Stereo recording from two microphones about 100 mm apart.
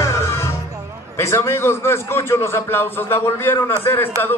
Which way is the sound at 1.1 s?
25° left (ahead or behind).